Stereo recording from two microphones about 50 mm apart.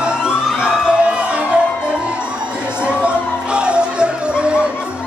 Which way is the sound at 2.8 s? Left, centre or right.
Right.